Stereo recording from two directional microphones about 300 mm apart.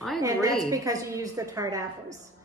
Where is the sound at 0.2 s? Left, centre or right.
Centre.